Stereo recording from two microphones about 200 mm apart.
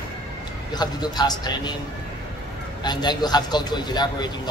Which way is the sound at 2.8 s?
20° left (ahead or behind).